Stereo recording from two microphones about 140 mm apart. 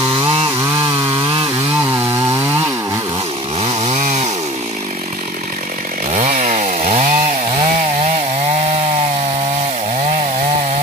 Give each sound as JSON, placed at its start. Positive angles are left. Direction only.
{"t": 0.6, "sound": "chainsaw", "side_deg": -25}
{"t": 3.6, "sound": "chainsaw", "side_deg": -55}
{"t": 6.1, "sound": "chainsaw", "side_deg": -60}